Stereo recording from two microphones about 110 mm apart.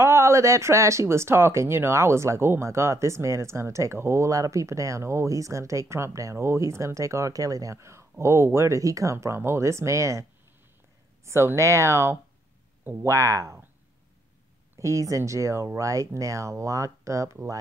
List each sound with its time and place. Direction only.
0.0 s speech: 25° right (ahead or behind)
11.2 s speech: 25° right (ahead or behind)
14.8 s speech: 30° right (ahead or behind)